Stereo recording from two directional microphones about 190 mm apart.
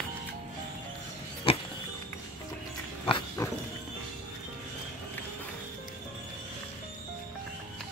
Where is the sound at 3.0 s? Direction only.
25° left (ahead or behind).